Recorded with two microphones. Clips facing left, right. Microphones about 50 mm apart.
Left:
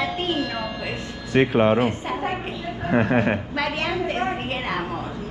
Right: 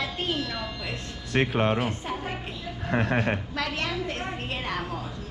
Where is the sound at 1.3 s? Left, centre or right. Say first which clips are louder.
Left 6 dB; centre.